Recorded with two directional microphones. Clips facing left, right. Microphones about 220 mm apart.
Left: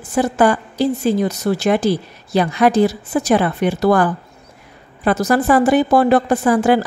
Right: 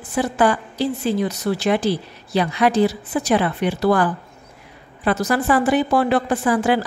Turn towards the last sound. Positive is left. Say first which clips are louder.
# left 4 dB
turn(degrees=45)  # may be behind; listen again after turning